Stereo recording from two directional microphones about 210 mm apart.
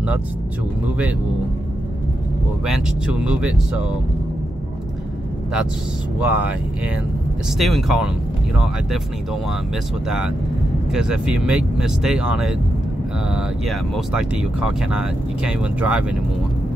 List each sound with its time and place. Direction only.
2.6 s speech: 5° right (ahead or behind)
6.1 s speech: 5° right (ahead or behind)
7.5 s speech: centre (ahead or behind)
10.0 s speech: 5° right (ahead or behind)